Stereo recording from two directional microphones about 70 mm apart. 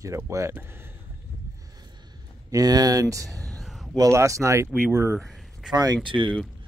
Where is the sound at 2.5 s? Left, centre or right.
Right.